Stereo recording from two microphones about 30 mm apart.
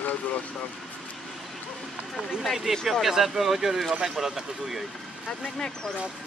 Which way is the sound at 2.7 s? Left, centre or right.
Centre.